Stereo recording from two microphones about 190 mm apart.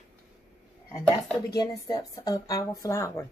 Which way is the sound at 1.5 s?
20° left (ahead or behind).